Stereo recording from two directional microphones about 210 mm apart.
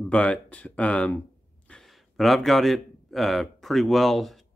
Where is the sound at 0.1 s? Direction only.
5° left (ahead or behind).